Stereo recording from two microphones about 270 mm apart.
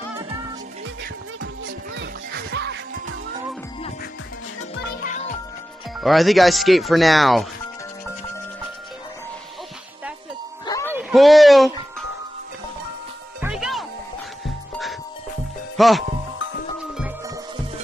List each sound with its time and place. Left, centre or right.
2.0 s music: right
4.8 s music: left
5.9 s speech: centre
10.6 s music: centre
10.9 s a sound: centre
13.4 s music: centre
15.8 s speech: centre